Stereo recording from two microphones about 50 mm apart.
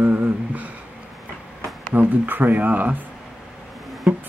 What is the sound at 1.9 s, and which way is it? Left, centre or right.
Speech, right.